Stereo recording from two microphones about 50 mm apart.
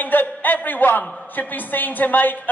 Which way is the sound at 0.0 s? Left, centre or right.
Left.